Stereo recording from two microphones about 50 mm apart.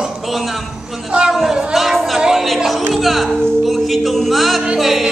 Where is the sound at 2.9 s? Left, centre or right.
Centre.